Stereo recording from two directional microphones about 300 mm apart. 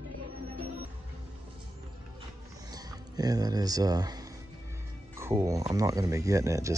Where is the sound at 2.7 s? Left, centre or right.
Centre.